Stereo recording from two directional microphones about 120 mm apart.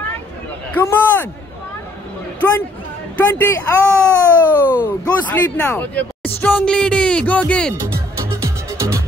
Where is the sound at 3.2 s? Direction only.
15° left (ahead or behind).